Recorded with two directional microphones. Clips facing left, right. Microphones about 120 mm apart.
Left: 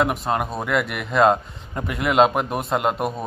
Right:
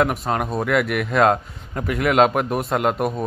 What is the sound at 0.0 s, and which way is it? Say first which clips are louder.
A man's voice: right 1 dB; centre (ahead or behind).